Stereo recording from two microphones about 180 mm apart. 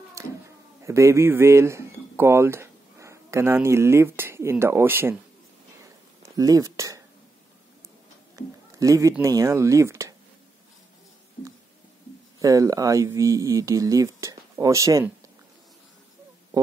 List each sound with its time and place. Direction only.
0.2 s a sound: 15° right (ahead or behind)
0.8 s speech: 15° right (ahead or behind)
6.3 s speech: 20° right (ahead or behind)
8.4 s speech: 20° right (ahead or behind)
12.4 s speech: 20° right (ahead or behind)
16.5 s a sound: 20° right (ahead or behind)